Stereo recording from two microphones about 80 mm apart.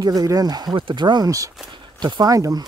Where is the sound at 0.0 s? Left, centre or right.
Right.